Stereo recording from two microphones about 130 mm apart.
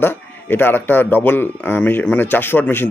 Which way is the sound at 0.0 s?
15° left (ahead or behind).